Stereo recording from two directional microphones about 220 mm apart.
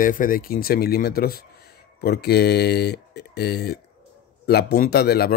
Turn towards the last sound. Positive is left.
turn(degrees=45)  # may be behind; listen again after turning